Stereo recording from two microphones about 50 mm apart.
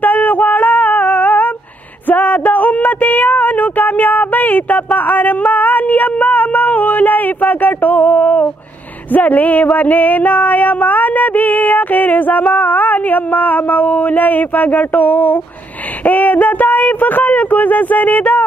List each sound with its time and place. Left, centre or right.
0.0 s female singing: left
2.0 s speech: left
9.1 s a sound: left